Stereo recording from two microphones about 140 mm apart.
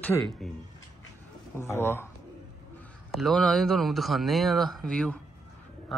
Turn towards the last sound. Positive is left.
turn(degrees=0)  # may be behind; listen again after turning